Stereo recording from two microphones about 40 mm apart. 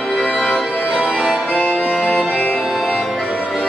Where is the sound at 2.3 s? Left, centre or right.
Left.